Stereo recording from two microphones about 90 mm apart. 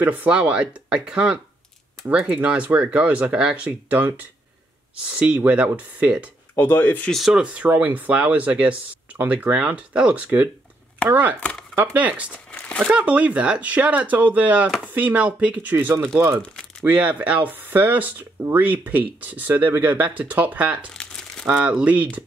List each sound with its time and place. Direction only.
0.0 s speech: 20° right (ahead or behind)
6.5 s speech: 25° left (ahead or behind)
7.1 s speech: centre (ahead or behind)
7.4 s speech: 15° right (ahead or behind)
11.3 s speech: 10° left (ahead or behind)
11.7 s speech: 20° right (ahead or behind)
12.4 s crumpling: 15° left (ahead or behind)
12.9 s speech: 15° right (ahead or behind)
20.9 s crumpling: 10° left (ahead or behind)
21.5 s speech: 15° right (ahead or behind)